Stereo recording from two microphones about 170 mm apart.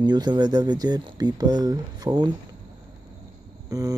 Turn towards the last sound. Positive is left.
turn(degrees=-20)  # may be behind; listen again after turning